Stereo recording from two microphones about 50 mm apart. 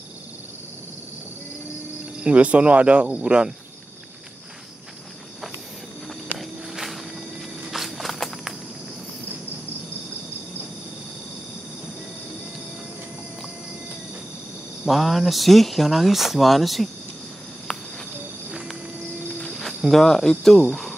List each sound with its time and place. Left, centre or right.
2.2 s speech: right
6.3 s a sound: centre
7.7 s walk: centre
14.9 s speech: centre
19.9 s speech: centre